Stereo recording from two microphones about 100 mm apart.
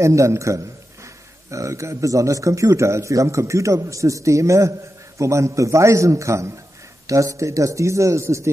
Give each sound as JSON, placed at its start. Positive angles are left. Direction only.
{"t": 0.0, "sound": "a man's voice", "side_deg": -30}